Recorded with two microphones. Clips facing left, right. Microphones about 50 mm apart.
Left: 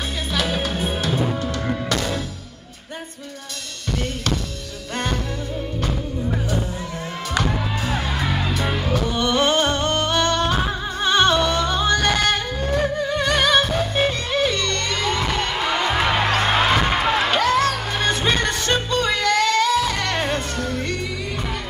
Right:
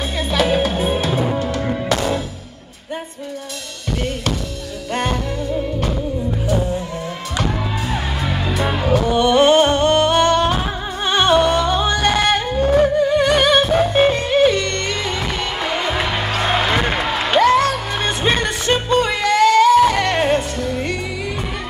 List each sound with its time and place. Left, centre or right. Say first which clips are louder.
0.3 s music: right 7 dB; right
1.9 s music: right 5 dB; right
4.9 s music: right 4 dB; right
8.5 s music: right 4 dB; centre
8.8 s music: right 9 dB; right
9.1 s music: right 7 dB; right
17.3 s music: right 5 dB; right
18.0 s music: right 1 dB; right